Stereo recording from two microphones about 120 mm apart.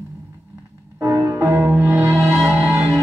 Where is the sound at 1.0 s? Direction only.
20° right (ahead or behind).